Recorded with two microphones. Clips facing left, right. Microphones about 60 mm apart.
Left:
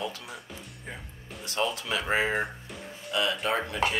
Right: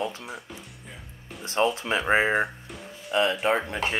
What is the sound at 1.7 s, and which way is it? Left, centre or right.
Speech, right.